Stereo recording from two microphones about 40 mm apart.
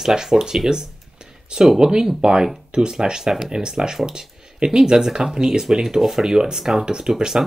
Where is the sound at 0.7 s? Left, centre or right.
Centre.